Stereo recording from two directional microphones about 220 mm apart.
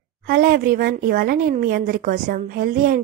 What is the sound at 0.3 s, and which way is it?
Speech, 40° right (ahead or behind).